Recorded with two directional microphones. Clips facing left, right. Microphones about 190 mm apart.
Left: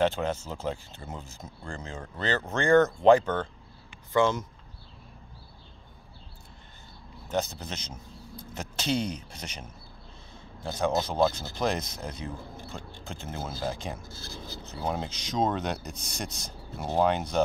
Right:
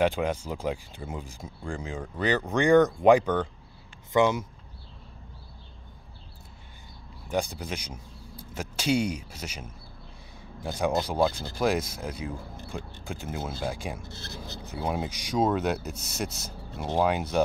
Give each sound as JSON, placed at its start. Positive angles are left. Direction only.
{"t": 0.0, "sound": "speech", "side_deg": -10}
{"t": 7.2, "sound": "speech", "side_deg": -10}
{"t": 14.0, "sound": "speech", "side_deg": -25}
{"t": 14.6, "sound": "speech", "side_deg": -10}